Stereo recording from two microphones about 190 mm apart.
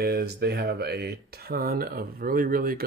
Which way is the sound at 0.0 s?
55° right (ahead or behind).